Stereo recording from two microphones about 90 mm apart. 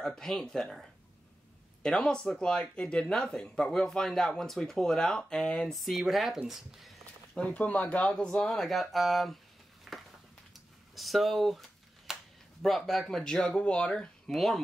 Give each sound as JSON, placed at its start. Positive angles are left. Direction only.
{"t": 0.0, "sound": "speech", "side_deg": 5}
{"t": 7.3, "sound": "speech", "side_deg": 15}
{"t": 9.9, "sound": "a sound", "side_deg": -5}
{"t": 12.6, "sound": "speech", "side_deg": 5}